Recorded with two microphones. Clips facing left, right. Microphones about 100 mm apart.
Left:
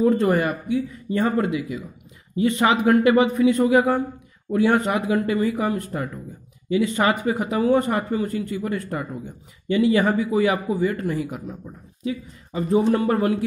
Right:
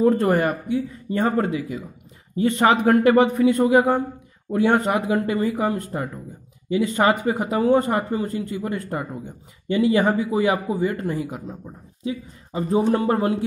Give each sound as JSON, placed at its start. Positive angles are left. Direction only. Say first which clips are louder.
{"t": 0.2, "sound": "a man's voice", "louder": "right 1 dB", "side_deg": -40}
{"t": 3.6, "sound": "speech", "louder": "right 1 dB", "side_deg": -30}